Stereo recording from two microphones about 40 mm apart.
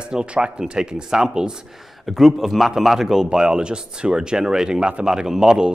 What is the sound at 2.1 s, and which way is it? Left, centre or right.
Speech, centre.